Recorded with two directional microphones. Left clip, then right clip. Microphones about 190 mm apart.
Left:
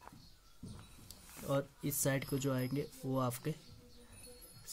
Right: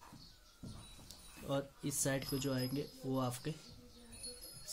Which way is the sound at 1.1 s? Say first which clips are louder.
Left 3 dB; 25° left (ahead or behind).